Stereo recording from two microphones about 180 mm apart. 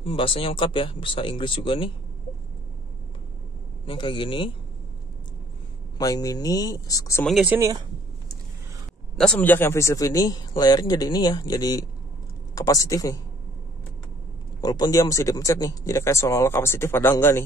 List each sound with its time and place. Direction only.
0.0 s speech: 30° left (ahead or behind)
3.8 s speech: 25° left (ahead or behind)
5.9 s speech: 20° left (ahead or behind)
7.2 s speech: centre (ahead or behind)
7.5 s speech: 20° right (ahead or behind)
9.1 s speech: 5° left (ahead or behind)
14.6 s speech: 20° left (ahead or behind)